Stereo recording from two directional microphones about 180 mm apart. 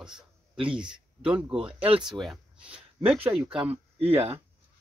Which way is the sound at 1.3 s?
5° right (ahead or behind).